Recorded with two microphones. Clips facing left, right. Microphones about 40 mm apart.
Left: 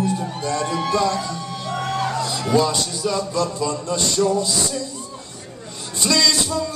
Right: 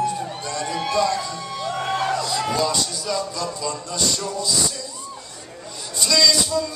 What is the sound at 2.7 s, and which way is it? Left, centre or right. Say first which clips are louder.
A man's voice: left 2 dB; left.